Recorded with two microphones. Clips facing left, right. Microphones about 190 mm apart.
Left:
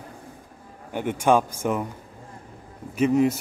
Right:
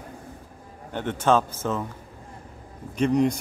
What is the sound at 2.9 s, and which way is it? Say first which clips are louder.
Speech: left 1 dB; 5° left (ahead or behind).